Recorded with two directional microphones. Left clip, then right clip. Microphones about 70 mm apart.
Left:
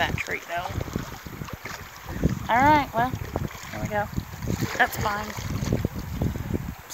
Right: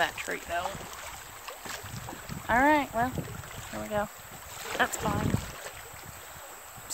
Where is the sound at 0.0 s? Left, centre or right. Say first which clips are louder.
Left 3 dB; right.